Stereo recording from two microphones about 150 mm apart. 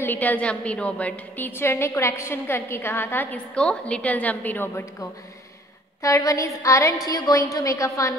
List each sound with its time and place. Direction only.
0.0 s a woman's voice: 10° left (ahead or behind)
6.0 s a woman's voice: 20° left (ahead or behind)